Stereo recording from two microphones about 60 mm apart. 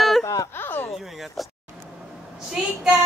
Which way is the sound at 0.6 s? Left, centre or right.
Left.